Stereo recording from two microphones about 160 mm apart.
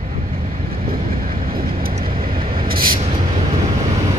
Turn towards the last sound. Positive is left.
turn(degrees=-65)  # may be behind; listen again after turning